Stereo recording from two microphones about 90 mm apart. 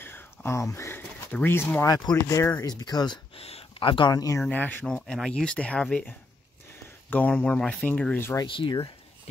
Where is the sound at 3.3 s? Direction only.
80° left.